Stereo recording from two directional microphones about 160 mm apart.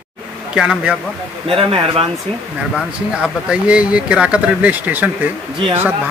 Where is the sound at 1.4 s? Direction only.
35° right (ahead or behind).